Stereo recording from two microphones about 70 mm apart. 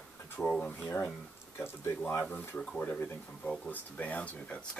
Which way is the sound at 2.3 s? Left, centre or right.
Left.